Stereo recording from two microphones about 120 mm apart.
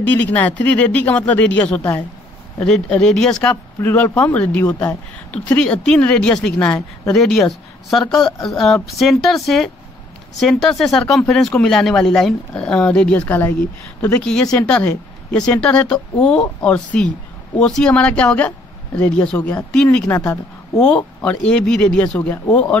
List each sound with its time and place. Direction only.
0.0 s speech: 15° left (ahead or behind)
2.6 s speech: 10° left (ahead or behind)
20.1 s a woman's voice: 25° left (ahead or behind)
20.8 s speech: 10° left (ahead or behind)